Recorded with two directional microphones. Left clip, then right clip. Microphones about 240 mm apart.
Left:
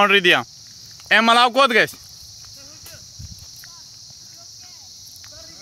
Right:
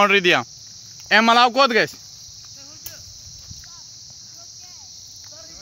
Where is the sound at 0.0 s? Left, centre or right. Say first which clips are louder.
Left 1 dB; centre.